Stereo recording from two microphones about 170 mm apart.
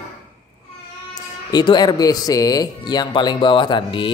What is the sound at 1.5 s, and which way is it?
Speech, 25° left (ahead or behind).